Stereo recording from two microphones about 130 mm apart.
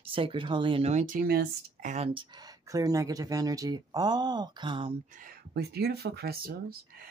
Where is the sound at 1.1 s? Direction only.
90° right.